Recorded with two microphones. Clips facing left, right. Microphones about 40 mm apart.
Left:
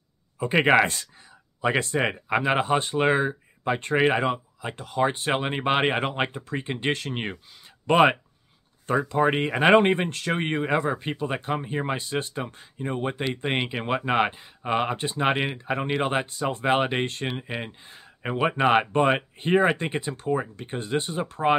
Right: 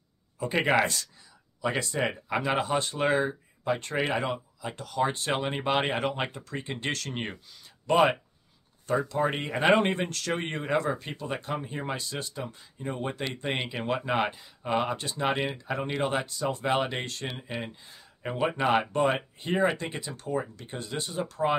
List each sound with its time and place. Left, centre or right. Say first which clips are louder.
0.4 s speech: left 5 dB; left
7.8 s speech: left 4 dB; left